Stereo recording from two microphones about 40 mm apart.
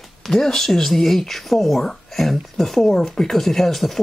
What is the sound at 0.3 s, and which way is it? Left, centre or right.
Speech, centre.